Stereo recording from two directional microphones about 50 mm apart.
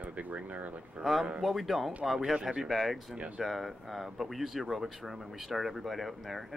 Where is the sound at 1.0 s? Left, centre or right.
Centre.